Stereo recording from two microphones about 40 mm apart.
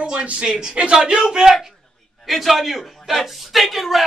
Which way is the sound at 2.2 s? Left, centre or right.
Centre.